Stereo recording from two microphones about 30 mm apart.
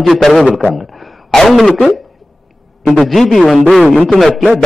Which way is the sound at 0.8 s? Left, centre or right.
Centre.